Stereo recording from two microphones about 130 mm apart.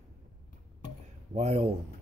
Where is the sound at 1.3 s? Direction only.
55° right (ahead or behind).